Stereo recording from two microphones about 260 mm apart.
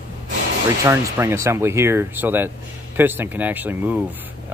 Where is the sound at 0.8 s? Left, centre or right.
Centre.